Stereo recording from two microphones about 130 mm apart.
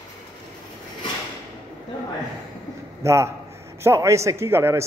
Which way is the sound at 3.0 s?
20° right (ahead or behind).